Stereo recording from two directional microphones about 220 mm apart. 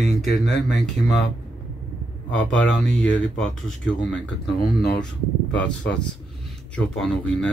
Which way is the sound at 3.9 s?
55° left (ahead or behind).